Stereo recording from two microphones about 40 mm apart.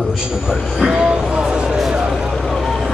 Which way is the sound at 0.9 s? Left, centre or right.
Right.